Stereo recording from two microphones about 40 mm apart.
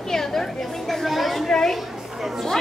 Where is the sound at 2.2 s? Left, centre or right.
Centre.